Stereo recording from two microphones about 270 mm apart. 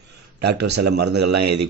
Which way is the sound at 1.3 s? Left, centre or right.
Right.